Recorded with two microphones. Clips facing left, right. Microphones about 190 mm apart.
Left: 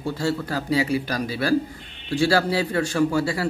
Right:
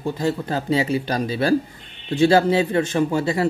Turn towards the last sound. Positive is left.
turn(degrees=-20)  # may be behind; listen again after turning